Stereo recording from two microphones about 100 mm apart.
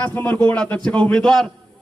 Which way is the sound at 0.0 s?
15° left (ahead or behind).